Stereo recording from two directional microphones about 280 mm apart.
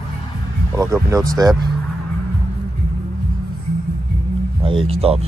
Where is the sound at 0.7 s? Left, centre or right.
Centre.